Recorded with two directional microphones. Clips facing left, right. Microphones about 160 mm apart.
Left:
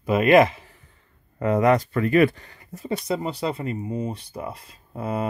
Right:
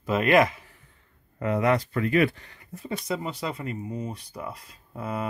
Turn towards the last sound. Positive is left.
turn(degrees=25)  # may be behind; listen again after turning